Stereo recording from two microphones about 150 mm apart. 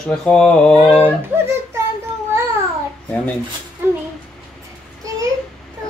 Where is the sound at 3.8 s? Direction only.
15° right (ahead or behind).